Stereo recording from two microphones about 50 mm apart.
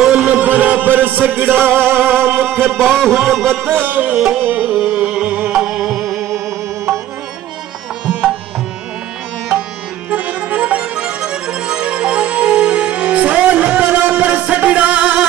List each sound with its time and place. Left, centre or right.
0.0 s music: centre
0.5 s music: right
2.7 s music: centre
3.7 s music: right
4.6 s music: right; by 6.4 s centre
8.1 s music: right
10.0 s music: right